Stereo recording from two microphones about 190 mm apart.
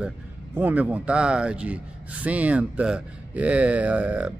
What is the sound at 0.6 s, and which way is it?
Speech, 10° right (ahead or behind).